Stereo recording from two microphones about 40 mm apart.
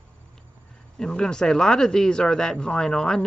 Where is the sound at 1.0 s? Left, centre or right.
Centre.